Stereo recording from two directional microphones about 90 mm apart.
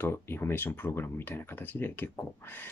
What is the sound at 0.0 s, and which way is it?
Speech, 25° left (ahead or behind).